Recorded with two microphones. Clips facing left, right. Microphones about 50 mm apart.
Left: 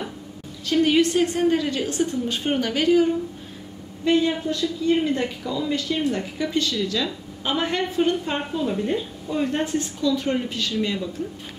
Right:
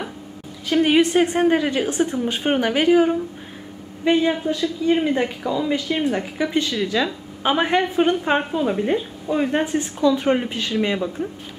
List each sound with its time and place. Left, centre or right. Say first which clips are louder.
0.7 s a woman's voice: right 2 dB; right